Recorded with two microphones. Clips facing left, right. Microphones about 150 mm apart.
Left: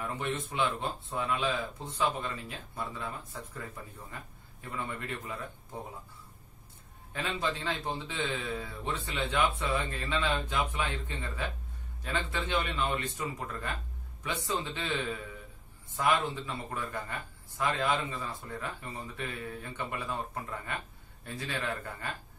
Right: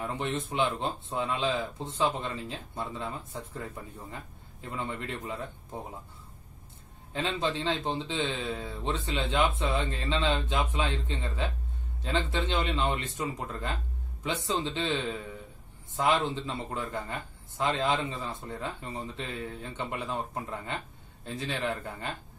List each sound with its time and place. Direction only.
0.0 s a man's voice: 25° right (ahead or behind)
7.1 s a man's voice: 25° right (ahead or behind)
16.3 s a man's voice: 25° right (ahead or behind)